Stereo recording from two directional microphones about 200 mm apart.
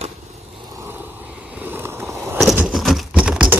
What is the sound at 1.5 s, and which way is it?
Skateboard, 10° right (ahead or behind).